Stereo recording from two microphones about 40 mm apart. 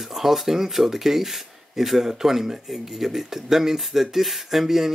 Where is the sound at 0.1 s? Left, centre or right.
Centre.